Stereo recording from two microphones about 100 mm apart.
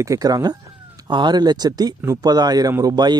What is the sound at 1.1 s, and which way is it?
Speech, 50° right (ahead or behind).